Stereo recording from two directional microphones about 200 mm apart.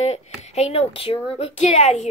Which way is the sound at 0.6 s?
30° left (ahead or behind).